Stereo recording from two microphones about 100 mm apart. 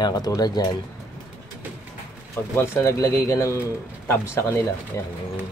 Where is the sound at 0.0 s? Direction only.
40° left (ahead or behind).